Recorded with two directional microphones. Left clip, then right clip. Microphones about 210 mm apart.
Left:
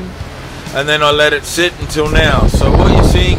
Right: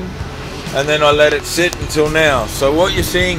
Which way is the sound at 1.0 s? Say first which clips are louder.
Even; 10° left (ahead or behind).